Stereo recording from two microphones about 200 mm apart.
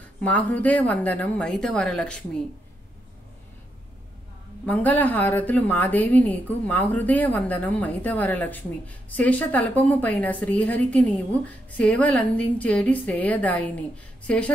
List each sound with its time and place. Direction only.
0.2 s a woman's voice: 5° left (ahead or behind)
4.6 s a woman's voice: 10° left (ahead or behind)